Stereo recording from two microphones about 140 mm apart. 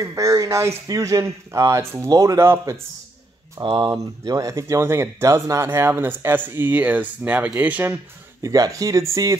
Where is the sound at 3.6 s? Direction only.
35° right (ahead or behind); by 8.0 s 10° right (ahead or behind).